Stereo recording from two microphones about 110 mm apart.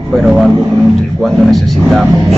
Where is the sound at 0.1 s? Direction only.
Centre (ahead or behind).